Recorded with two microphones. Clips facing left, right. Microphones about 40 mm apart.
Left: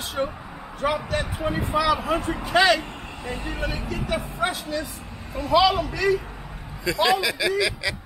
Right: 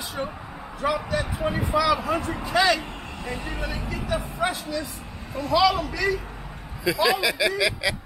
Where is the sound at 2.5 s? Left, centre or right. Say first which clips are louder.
Left 2 dB; left.